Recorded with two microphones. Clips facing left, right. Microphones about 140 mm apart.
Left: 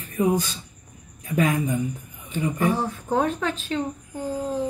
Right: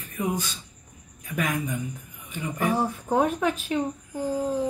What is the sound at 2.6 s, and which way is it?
Speech, 10° right (ahead or behind).